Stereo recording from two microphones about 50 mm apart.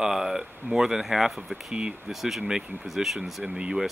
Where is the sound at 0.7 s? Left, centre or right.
Centre.